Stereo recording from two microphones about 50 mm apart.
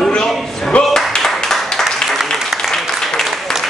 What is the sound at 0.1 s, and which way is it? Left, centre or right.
Music, centre.